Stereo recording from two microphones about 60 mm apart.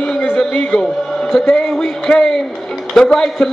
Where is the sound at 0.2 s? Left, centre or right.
Left.